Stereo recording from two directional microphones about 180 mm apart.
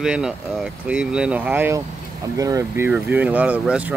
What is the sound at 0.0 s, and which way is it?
Speech, 5° right (ahead or behind).